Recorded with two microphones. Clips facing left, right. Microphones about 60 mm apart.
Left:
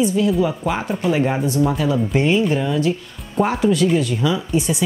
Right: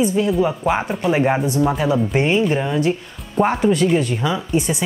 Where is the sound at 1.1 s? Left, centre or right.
Right.